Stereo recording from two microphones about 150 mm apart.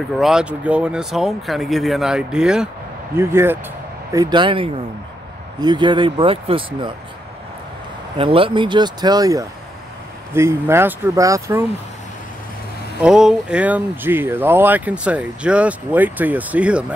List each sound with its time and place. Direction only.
0.2 s speech: 5° right (ahead or behind)
3.2 s speech: 15° right (ahead or behind)
4.1 s speech: 30° right (ahead or behind)
8.2 s speech: 40° right (ahead or behind); by 11.6 s 20° right (ahead or behind)
13.0 s speech: 5° right (ahead or behind)